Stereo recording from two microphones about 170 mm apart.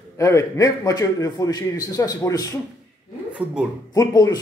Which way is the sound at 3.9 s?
20° left (ahead or behind).